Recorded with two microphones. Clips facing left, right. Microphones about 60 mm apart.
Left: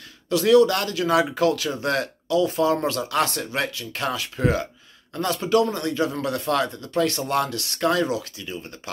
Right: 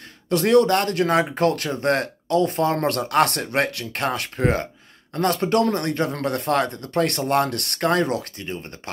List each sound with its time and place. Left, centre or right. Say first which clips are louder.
0.3 s speech: even; right